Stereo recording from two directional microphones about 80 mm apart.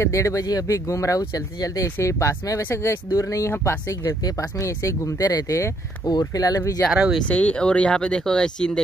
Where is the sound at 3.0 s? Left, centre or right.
Left.